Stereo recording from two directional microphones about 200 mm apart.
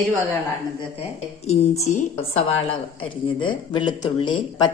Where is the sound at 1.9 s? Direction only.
35° left (ahead or behind).